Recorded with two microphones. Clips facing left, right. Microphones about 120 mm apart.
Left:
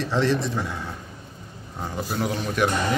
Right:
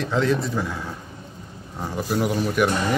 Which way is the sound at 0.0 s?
Centre (ahead or behind).